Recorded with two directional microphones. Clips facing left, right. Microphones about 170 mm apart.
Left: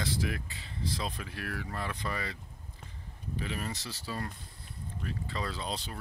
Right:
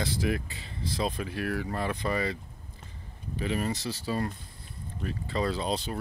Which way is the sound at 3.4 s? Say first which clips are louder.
Right 8 dB; 20° right (ahead or behind).